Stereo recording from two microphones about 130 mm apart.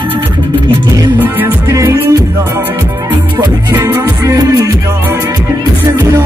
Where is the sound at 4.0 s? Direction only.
25° right (ahead or behind).